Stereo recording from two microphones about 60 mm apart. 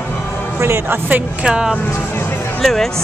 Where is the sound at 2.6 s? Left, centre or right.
Centre.